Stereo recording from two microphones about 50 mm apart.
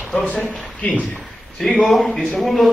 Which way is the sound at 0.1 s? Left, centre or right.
Left.